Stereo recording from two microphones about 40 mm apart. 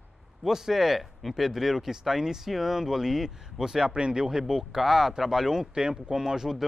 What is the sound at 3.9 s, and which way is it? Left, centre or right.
Speech, right.